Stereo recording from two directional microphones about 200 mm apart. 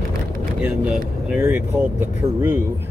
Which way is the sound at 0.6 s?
5° right (ahead or behind).